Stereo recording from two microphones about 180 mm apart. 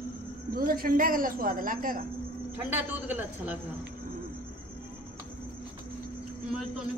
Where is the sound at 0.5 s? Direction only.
55° right (ahead or behind).